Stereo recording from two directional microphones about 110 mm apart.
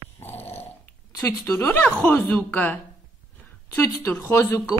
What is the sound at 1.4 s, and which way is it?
A woman's voice, 20° left (ahead or behind).